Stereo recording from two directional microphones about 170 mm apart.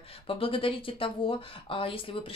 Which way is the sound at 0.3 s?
30° left (ahead or behind).